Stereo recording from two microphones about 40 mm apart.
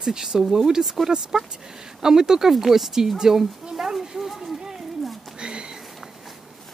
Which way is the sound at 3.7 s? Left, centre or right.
Centre.